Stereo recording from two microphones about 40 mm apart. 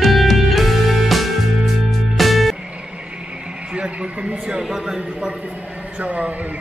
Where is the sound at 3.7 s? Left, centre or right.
Right.